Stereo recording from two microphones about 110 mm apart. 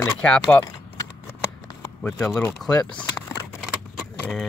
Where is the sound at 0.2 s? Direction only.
10° left (ahead or behind).